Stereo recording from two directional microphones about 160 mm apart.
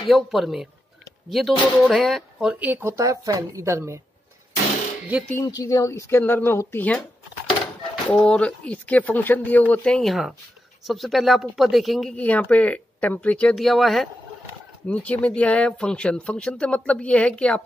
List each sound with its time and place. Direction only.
0.1 s speech: centre (ahead or behind)
2.7 s a woman's voice: 15° right (ahead or behind)
5.3 s speech: 20° left (ahead or behind)
8.1 s speech: 5° left (ahead or behind)